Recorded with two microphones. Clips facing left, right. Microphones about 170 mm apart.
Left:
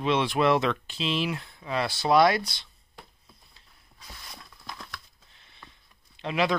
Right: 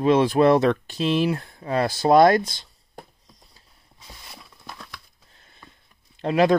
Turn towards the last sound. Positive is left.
turn(degrees=-45)  # may be behind; listen again after turning